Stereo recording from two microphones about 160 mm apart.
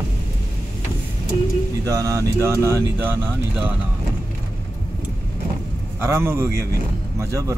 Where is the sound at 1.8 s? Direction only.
20° right (ahead or behind).